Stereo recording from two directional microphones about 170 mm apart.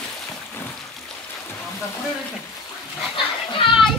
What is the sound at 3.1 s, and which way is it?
Children playing, 30° left (ahead or behind).